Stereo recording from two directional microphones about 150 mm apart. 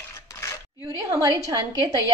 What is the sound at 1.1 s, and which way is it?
Speech, 25° right (ahead or behind).